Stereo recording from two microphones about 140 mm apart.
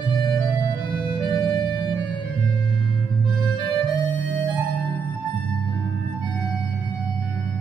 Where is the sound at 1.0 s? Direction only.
35° left (ahead or behind).